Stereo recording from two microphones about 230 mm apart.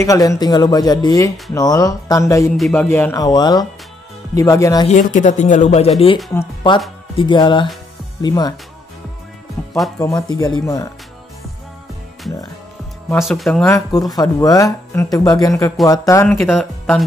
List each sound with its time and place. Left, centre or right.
0.0 s speech: centre
2.5 s speech: centre
4.8 s speech: left
7.2 s speech: left
9.9 s speech: centre
13.1 s speech: centre
13.7 s speech: centre